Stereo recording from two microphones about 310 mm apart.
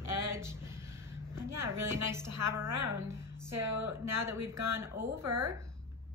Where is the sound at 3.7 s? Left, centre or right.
Right.